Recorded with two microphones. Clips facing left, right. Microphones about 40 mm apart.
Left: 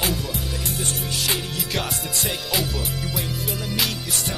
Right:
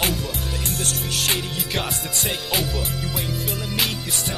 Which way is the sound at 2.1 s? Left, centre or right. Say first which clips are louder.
Right 1 dB; right.